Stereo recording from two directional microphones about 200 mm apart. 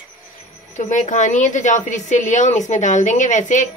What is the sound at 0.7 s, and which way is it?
A woman's voice, 40° left (ahead or behind).